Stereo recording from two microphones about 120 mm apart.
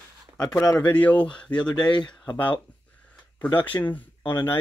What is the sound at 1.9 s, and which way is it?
Speech, 40° left (ahead or behind).